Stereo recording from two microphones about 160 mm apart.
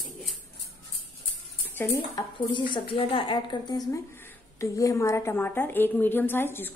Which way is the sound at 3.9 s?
15° left (ahead or behind).